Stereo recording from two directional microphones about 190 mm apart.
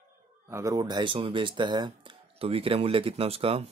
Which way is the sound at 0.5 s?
15° right (ahead or behind).